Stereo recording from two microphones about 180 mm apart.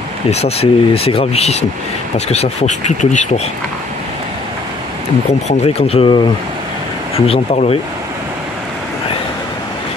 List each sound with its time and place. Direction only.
0.3 s speech: 35° left (ahead or behind)
5.5 s speech: 35° left (ahead or behind)